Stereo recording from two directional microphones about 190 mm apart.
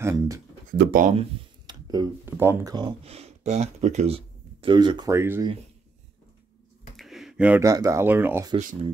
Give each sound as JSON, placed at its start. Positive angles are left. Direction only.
{"t": 0.0, "sound": "speech", "side_deg": -15}
{"t": 0.7, "sound": "speech", "side_deg": -45}
{"t": 1.7, "sound": "speech", "side_deg": -20}
{"t": 7.0, "sound": "speech", "side_deg": 0}